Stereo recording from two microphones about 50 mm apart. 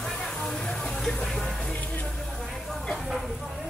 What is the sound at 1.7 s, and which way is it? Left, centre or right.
Music, left.